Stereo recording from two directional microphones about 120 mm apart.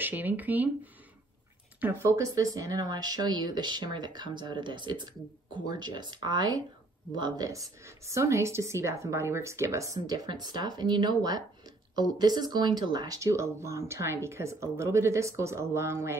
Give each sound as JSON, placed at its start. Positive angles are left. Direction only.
{"t": 0.0, "sound": "speech", "side_deg": -15}
{"t": 1.8, "sound": "speech", "side_deg": -15}
{"t": 2.1, "sound": "speech", "side_deg": -30}